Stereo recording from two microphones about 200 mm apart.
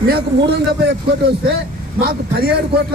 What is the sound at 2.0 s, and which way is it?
Speech, 50° right (ahead or behind).